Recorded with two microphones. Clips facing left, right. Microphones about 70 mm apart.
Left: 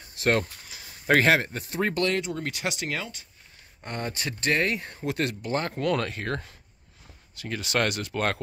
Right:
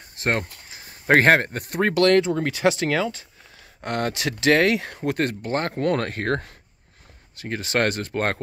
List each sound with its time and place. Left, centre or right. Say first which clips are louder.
0.1 s speech: even; right
2.0 s speech: right 9 dB; right
3.8 s speech: right 7 dB; right
5.0 s speech: right 2 dB; right
7.3 s speech: right 3 dB; right